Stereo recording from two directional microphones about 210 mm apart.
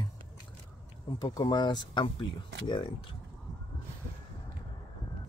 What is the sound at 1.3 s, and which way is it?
Speech, 20° left (ahead or behind).